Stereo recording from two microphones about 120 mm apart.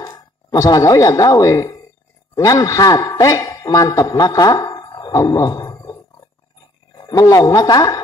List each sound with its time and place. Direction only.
0.0 s a man's voice: 30° left (ahead or behind)
7.0 s speech: 30° left (ahead or behind)